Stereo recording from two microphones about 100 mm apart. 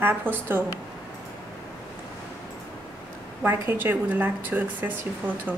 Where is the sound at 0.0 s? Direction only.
20° right (ahead or behind).